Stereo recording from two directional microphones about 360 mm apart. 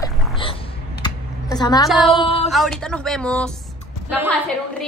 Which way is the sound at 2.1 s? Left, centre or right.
Centre.